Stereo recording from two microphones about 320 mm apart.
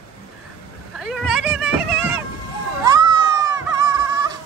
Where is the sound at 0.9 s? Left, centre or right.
Centre.